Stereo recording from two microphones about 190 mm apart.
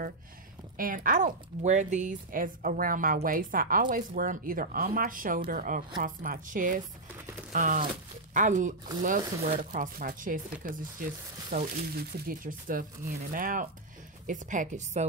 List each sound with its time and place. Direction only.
0.7 s a woman's voice: 45° right (ahead or behind)